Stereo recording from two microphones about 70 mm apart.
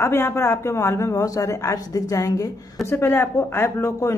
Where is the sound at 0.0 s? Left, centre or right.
Left.